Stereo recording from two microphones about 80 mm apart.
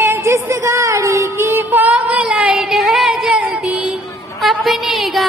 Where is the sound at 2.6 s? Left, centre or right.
Centre.